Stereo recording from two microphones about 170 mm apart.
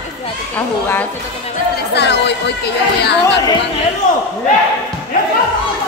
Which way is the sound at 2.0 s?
90° left.